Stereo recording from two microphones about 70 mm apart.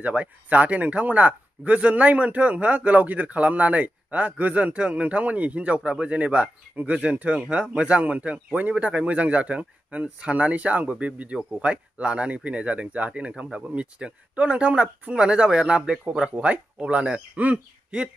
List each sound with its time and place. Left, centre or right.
0.0 s speech: right